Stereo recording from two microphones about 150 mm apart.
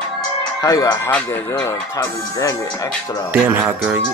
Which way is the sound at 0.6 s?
25° left (ahead or behind).